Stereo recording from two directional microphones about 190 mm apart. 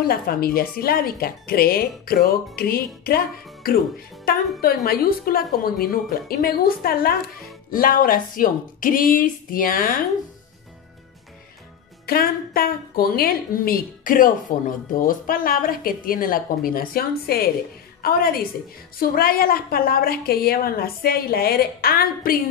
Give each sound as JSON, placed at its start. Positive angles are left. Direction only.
{"t": 0.0, "sound": "a woman's voice", "side_deg": 50}
{"t": 4.3, "sound": "a woman's voice", "side_deg": 50}
{"t": 12.1, "sound": "a woman's voice", "side_deg": 50}